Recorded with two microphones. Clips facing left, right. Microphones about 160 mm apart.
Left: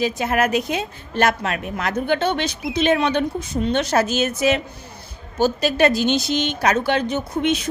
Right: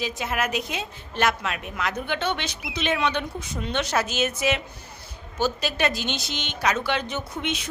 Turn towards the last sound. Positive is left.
turn(degrees=45)  # may be behind; listen again after turning